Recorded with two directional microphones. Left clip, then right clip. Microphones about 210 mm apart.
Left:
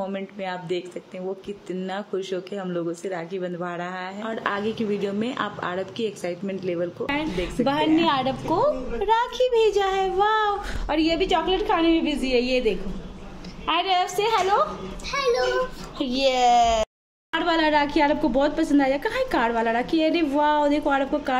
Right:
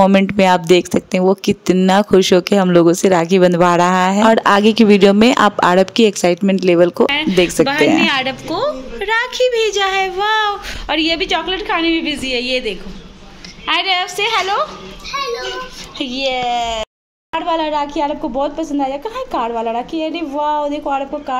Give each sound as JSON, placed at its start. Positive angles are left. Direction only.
{"t": 0.0, "sound": "speech", "side_deg": -50}
{"t": 7.6, "sound": "a woman's voice", "side_deg": 5}
{"t": 16.0, "sound": "a woman's voice", "side_deg": 0}